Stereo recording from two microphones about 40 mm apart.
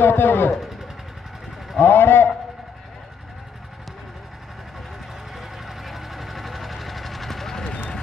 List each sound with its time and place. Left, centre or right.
0.0 s speech: left
0.5 s vehicle: centre
1.8 s a sound: left
5.3 s vehicle: centre